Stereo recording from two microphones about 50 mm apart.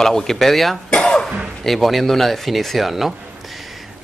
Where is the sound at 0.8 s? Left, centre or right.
Centre.